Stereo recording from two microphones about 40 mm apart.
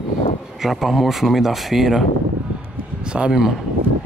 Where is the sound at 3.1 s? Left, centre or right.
Right.